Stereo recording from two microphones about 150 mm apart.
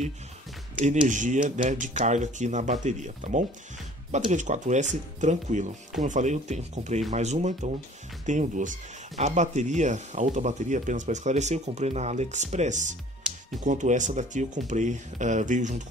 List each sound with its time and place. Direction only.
0.8 s speech: 55° right (ahead or behind)